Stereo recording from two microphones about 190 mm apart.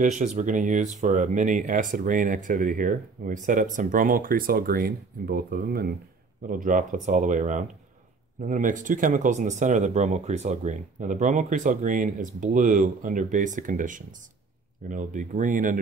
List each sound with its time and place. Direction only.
0.0 s speech: 40° right (ahead or behind)